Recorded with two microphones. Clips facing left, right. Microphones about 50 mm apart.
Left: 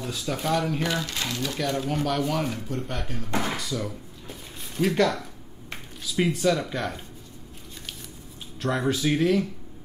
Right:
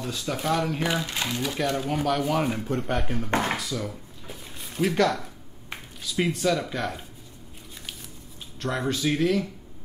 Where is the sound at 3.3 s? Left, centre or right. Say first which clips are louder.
Right 2 dB; right.